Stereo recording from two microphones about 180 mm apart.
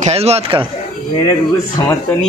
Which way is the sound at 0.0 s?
35° right (ahead or behind).